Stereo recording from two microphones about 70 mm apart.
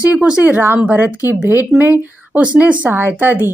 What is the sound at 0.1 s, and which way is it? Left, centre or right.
A woman's voice, centre.